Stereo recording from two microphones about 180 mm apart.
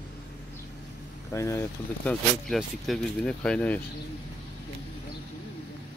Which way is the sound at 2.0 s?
Centre (ahead or behind).